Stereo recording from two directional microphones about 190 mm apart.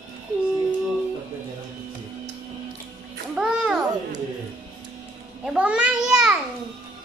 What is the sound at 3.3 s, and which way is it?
Children playing, 5° right (ahead or behind).